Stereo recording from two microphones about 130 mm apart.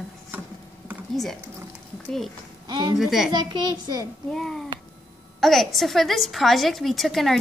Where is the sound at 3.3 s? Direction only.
35° right (ahead or behind).